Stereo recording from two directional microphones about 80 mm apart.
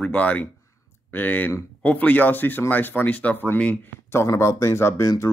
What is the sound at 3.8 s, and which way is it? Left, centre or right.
Speech, left.